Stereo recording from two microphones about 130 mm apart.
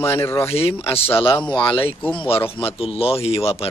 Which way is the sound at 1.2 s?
40° left (ahead or behind).